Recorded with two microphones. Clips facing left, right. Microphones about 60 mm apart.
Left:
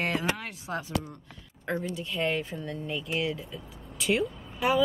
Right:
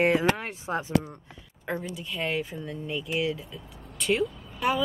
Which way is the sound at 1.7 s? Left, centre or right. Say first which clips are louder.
Left 1 dB; centre.